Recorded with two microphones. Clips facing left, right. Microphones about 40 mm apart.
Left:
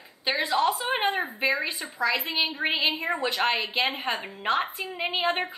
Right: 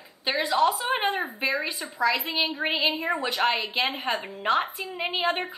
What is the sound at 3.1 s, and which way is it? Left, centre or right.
Speech, centre.